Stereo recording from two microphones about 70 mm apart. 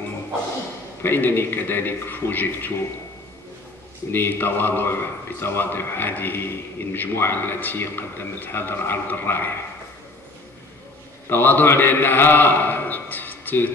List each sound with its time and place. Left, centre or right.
1.0 s a man's voice: left
4.1 s a man's voice: left
11.2 s a man's voice: left